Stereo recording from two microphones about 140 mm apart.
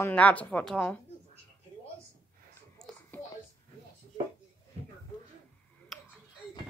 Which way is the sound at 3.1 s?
15° left (ahead or behind).